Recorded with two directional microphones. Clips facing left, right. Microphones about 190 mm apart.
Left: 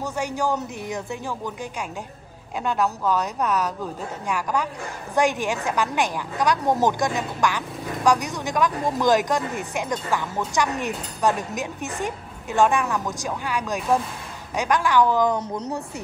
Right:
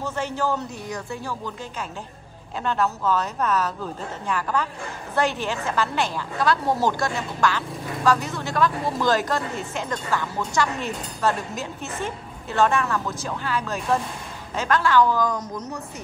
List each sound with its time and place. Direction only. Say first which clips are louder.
0.0 s a woman's voice: left 1 dB; 10° left (ahead or behind); by 15.8 s 30° left (ahead or behind)